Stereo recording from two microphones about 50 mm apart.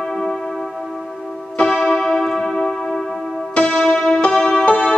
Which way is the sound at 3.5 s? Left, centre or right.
Centre.